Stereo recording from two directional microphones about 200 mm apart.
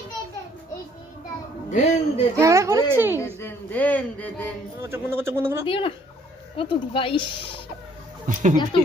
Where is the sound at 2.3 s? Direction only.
15° right (ahead or behind).